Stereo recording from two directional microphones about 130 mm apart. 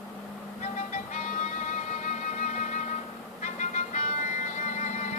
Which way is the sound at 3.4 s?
75° left (ahead or behind).